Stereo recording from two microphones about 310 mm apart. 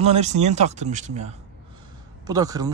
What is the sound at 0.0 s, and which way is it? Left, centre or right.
Speech, right.